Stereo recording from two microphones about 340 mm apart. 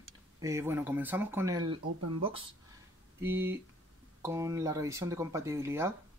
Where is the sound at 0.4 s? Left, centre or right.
Centre.